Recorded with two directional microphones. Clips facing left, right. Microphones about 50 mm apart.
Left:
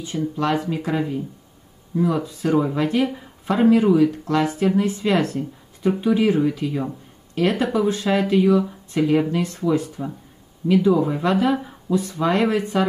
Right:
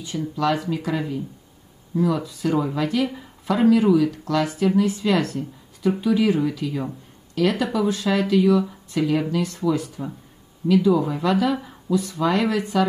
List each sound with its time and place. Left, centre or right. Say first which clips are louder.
0.0 s speech: even; left
11.2 s speech: left 1 dB; left